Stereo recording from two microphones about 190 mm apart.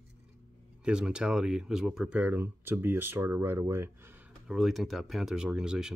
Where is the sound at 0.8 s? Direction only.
5° right (ahead or behind).